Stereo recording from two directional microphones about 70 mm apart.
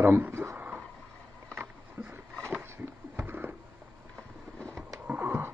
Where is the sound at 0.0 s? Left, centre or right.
Right.